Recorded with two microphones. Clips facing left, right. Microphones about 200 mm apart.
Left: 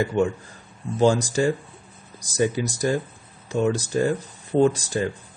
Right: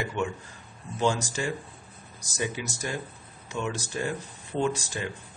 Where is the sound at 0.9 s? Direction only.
35° left (ahead or behind).